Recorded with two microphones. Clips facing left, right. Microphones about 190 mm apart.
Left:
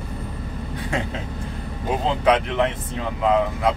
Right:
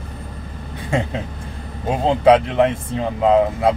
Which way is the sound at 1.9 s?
25° right (ahead or behind).